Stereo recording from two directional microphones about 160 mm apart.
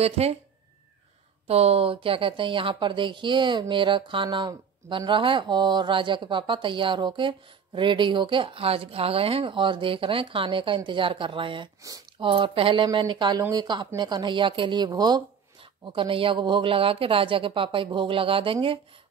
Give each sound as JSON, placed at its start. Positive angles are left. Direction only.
{"t": 0.0, "sound": "a woman's voice", "side_deg": -40}
{"t": 1.5, "sound": "a woman's voice", "side_deg": -40}